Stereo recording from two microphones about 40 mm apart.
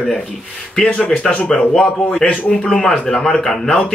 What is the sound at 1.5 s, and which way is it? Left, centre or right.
A man's voice, centre.